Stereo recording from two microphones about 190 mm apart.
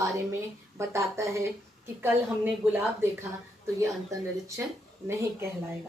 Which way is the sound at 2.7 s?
10° right (ahead or behind).